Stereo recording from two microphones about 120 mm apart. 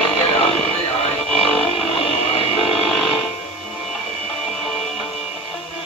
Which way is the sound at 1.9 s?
55° left (ahead or behind).